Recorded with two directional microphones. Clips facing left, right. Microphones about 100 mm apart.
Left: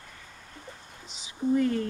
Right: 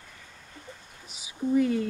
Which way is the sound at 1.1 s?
10° right (ahead or behind).